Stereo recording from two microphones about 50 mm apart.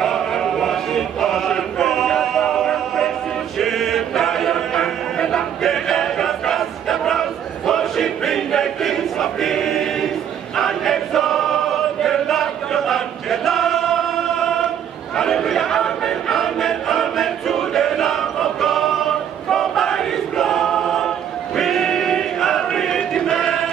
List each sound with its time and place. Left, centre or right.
0.0 s chant: centre
2.0 s music: centre
3.5 s chant: centre
10.5 s choir: centre
23.4 s chant: centre